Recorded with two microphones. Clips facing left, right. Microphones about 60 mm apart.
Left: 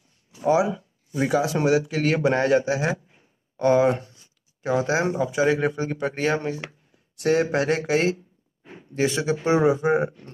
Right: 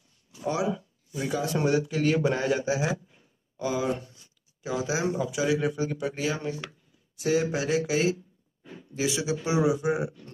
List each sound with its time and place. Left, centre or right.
0.4 s speech: centre
0.7 s a sound: left
1.3 s a man's voice: left